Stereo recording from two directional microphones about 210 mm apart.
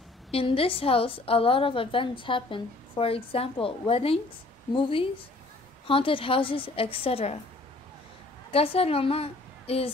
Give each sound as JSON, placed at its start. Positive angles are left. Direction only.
{"t": 0.3, "sound": "a woman's voice", "side_deg": 25}
{"t": 8.5, "sound": "a woman's voice", "side_deg": 30}